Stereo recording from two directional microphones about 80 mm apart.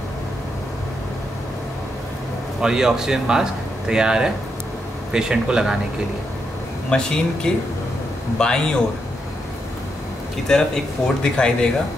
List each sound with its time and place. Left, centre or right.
2.6 s speech: centre
6.9 s speech: centre
10.5 s speech: centre